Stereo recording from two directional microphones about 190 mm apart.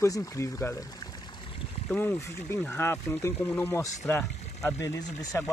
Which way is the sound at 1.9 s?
10° left (ahead or behind).